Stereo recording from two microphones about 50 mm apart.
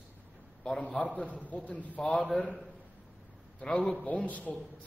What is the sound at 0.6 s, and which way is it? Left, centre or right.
A man's voice, left.